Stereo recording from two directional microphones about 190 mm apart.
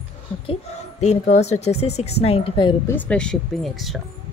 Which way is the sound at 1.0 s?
40° left (ahead or behind).